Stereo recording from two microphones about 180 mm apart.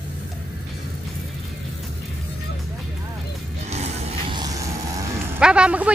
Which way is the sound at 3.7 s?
40° right (ahead or behind).